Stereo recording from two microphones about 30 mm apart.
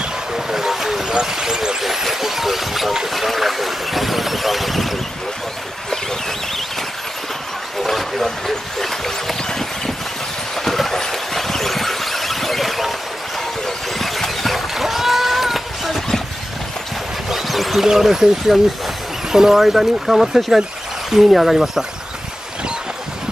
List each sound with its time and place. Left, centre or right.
0.3 s a sound: centre
1.2 s speech: centre
1.8 s speech: centre
7.8 s speech: centre
10.5 s vehicle: centre
14.7 s a sound: centre
17.3 s music: centre
17.7 s speech: centre